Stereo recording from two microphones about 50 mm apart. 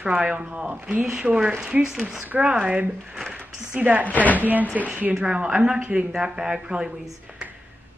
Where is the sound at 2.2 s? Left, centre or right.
Right.